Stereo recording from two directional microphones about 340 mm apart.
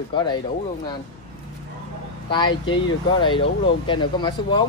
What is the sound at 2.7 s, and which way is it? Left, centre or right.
Speech, centre.